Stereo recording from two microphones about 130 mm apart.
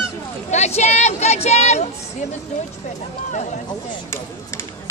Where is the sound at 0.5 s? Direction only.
60° left (ahead or behind).